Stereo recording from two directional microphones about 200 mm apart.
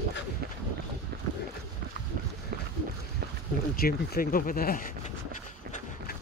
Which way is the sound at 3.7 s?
45° left (ahead or behind).